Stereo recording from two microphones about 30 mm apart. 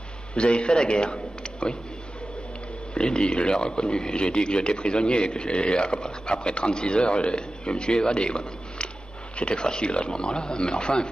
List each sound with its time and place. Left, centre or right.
0.4 s speech: left
3.0 s speech: left
10.2 s speech: left